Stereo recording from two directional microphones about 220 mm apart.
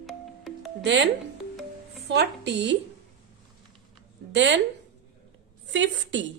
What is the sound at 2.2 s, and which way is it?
Speech, 50° right (ahead or behind).